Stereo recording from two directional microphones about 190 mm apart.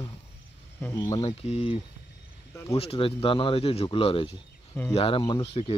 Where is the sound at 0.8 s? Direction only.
15° left (ahead or behind).